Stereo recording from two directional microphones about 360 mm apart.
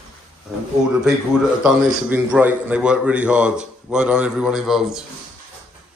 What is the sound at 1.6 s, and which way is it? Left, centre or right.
A man's voice, centre.